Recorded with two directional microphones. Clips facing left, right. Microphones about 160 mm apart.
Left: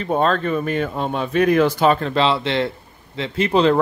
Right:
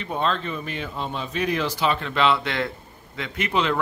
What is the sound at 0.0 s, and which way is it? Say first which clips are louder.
Speech: left 7 dB; 45° left (ahead or behind).